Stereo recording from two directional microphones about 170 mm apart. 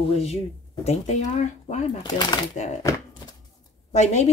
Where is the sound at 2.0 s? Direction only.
25° left (ahead or behind).